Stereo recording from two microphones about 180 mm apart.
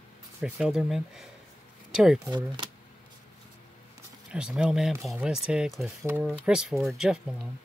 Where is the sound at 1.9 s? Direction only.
5° right (ahead or behind).